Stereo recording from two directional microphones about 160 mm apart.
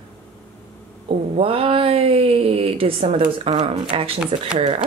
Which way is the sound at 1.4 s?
35° right (ahead or behind).